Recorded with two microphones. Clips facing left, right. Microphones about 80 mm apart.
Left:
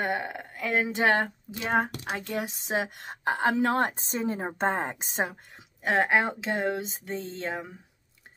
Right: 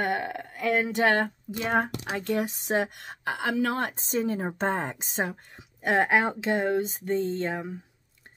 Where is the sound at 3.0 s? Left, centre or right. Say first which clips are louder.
Left 4 dB; left.